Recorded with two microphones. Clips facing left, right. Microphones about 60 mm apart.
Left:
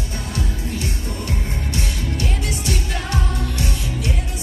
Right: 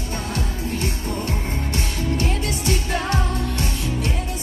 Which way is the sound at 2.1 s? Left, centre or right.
Right.